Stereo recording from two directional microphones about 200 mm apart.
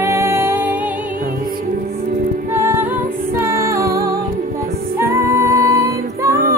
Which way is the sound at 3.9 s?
50° right (ahead or behind).